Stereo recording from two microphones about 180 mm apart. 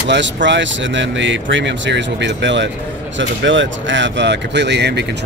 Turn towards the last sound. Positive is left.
turn(degrees=-70)  # may be behind; listen again after turning